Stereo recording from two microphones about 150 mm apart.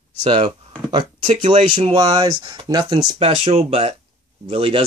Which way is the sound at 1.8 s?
30° right (ahead or behind).